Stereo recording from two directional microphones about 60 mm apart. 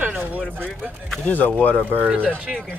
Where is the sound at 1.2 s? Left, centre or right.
Left.